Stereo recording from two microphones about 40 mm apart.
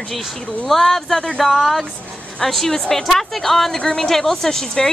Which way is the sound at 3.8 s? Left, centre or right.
Left.